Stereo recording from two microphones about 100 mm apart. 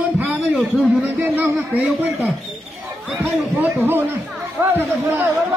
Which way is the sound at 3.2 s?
20° right (ahead or behind).